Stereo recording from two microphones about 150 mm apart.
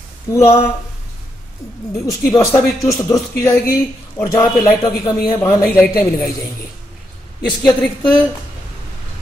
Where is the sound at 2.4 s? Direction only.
20° left (ahead or behind).